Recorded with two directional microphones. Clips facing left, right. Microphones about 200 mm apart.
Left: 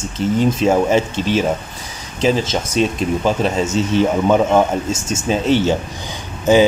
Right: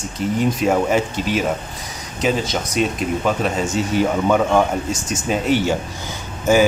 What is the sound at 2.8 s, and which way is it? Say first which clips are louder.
Speech: left 3 dB; 30° left (ahead or behind).